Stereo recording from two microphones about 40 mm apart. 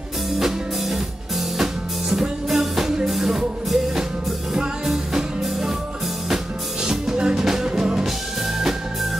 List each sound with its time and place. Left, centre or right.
0.3 s music: centre
6.9 s music: centre